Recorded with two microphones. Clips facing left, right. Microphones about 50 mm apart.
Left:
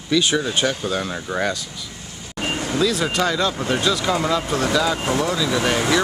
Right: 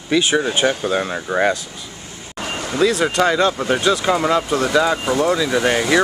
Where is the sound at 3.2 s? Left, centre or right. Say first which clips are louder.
Right 4 dB; centre.